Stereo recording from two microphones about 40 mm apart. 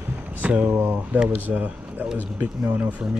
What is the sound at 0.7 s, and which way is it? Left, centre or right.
Speech, right.